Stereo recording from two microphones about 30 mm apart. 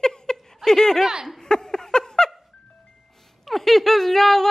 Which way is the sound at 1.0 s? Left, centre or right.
Centre.